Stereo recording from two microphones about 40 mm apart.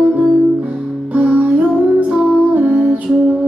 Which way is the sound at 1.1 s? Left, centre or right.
Right.